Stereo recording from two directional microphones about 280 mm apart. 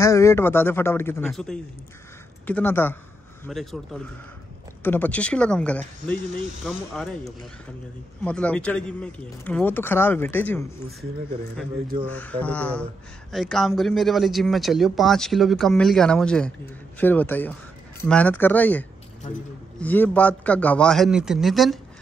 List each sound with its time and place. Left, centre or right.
0.0 s speech: centre
12.1 s speech: centre